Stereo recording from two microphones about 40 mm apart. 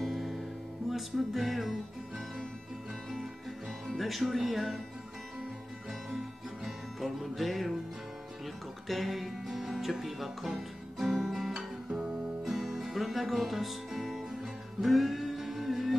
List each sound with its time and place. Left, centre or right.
0.0 s music: centre
4.0 s speech: centre
6.6 s music: centre
8.8 s music: centre
11.5 s music: centre